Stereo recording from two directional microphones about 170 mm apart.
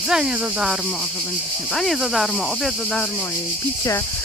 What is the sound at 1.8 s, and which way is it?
Speech, centre (ahead or behind).